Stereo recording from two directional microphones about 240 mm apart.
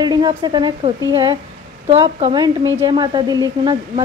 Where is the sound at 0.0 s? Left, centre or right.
Centre.